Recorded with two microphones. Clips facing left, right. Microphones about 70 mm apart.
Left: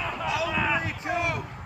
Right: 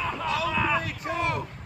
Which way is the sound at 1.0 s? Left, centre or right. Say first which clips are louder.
Left 1 dB; centre.